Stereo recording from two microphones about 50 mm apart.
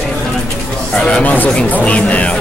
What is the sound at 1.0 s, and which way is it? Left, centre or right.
Speech, centre.